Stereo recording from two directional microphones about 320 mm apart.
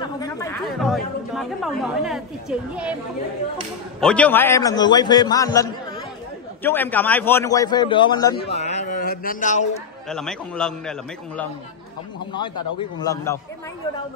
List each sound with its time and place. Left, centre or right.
0.0 s a sound: centre
0.7 s a woman's voice: centre
4.0 s a man's voice: centre; by 9.7 s left
10.0 s a woman's voice: centre
12.5 s a man's voice: left
13.0 s a man's voice: centre